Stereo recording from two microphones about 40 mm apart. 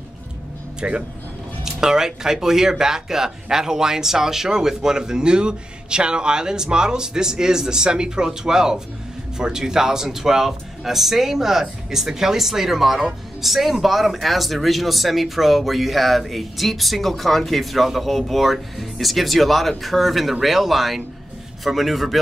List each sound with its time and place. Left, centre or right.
0.7 s speech: right
1.6 s speech: centre